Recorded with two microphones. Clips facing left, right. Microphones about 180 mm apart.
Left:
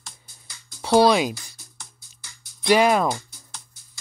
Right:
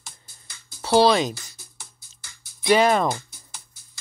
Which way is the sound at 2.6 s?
Centre (ahead or behind).